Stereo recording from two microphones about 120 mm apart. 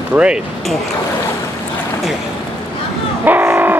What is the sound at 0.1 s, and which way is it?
Speech, 10° right (ahead or behind).